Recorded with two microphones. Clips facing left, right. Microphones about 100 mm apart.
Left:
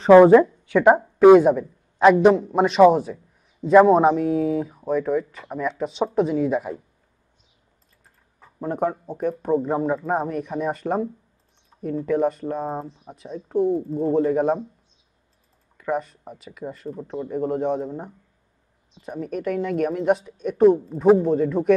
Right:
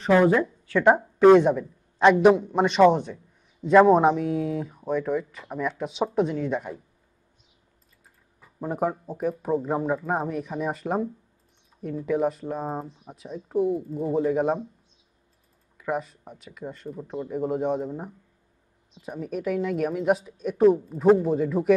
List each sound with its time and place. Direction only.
0.1 s a woman's voice: 45° left (ahead or behind)
0.7 s a woman's voice: 10° left (ahead or behind)
8.5 s speech: 5° right (ahead or behind)
11.7 s a sound: 30° left (ahead or behind)
12.1 s speech: centre (ahead or behind)
15.8 s speech: centre (ahead or behind)